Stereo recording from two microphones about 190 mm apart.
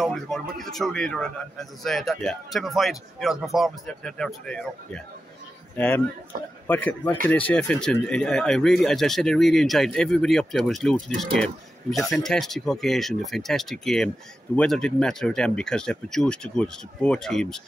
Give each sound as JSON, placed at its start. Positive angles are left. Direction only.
{"t": 0.0, "sound": "speech", "side_deg": 0}
{"t": 6.3, "sound": "a man's voice", "side_deg": -45}
{"t": 6.7, "sound": "speech", "side_deg": 10}